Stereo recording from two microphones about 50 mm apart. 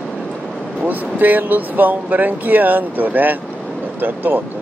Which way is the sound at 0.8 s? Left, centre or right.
Right.